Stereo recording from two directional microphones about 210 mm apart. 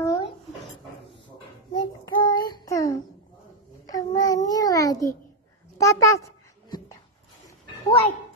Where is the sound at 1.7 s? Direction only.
20° left (ahead or behind).